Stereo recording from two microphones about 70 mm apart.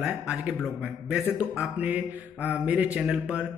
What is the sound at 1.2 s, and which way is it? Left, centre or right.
A man's voice, centre.